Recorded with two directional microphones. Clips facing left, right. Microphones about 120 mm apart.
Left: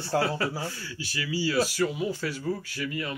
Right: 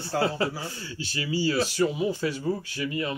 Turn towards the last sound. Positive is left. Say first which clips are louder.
# right 3 dB
turn(degrees=-25)  # may be behind; listen again after turning